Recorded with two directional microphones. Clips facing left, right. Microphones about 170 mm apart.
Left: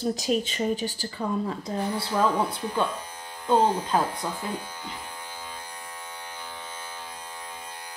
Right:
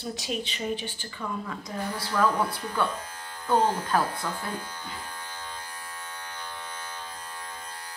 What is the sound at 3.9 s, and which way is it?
Electric shaver, 15° left (ahead or behind).